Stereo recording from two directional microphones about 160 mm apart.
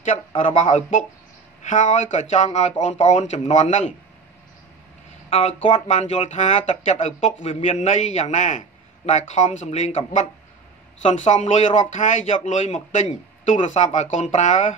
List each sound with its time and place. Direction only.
0.4 s speech: 50° left (ahead or behind)
5.3 s speech: 35° left (ahead or behind)